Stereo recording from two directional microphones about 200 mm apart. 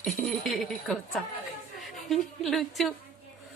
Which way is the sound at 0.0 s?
Centre (ahead or behind).